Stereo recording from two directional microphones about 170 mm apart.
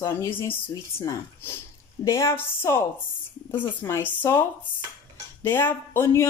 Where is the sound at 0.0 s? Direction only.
15° left (ahead or behind).